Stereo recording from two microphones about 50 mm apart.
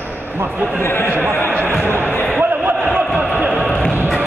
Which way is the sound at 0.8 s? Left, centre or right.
Left.